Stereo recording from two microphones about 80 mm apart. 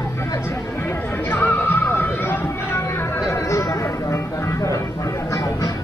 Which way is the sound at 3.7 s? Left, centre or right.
Left.